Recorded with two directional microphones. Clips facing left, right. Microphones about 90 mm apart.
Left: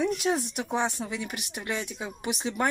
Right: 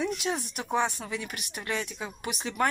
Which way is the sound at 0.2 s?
30° left (ahead or behind).